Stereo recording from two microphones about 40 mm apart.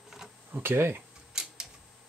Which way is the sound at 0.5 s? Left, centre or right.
Right.